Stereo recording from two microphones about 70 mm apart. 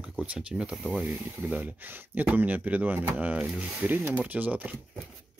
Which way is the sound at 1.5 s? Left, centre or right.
Right.